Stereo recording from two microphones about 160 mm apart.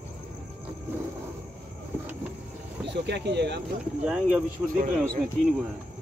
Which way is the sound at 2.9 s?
90° right.